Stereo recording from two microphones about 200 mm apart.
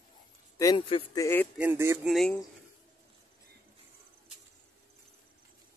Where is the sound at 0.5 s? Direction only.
20° left (ahead or behind).